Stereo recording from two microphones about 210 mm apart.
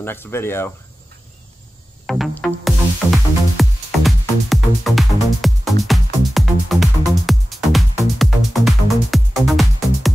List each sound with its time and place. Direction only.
0.0 s speech: 10° left (ahead or behind)
2.0 s music: centre (ahead or behind)